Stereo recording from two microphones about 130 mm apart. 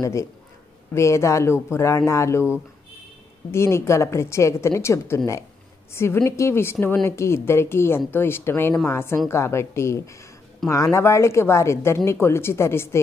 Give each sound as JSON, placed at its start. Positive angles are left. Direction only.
{"t": 0.0, "sound": "speech", "side_deg": 20}
{"t": 3.5, "sound": "speech", "side_deg": 20}